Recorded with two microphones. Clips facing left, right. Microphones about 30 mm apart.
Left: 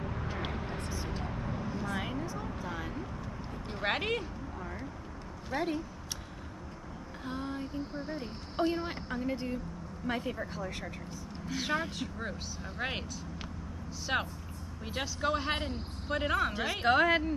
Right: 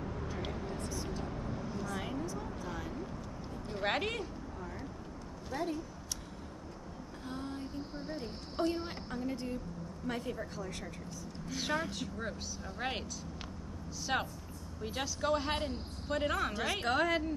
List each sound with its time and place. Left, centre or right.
0.1 s vehicle: left
0.6 s a sound: left
0.8 s vehicle: left
2.0 s a sound: left
3.7 s speech: centre
5.5 s speech: left
7.2 s female singing: left
8.1 s a woman's voice: left
14.1 s speech: centre
16.8 s a woman's voice: left